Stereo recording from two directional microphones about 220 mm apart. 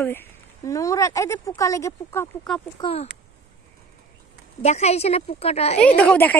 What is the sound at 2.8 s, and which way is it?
Speech, 25° left (ahead or behind).